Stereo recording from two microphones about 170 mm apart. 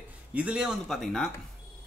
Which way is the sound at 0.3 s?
5° right (ahead or behind).